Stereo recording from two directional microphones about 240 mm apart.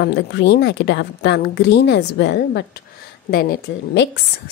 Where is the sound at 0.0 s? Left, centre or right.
Left.